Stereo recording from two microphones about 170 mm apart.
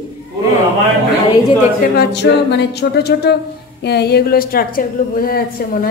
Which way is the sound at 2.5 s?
75° left (ahead or behind).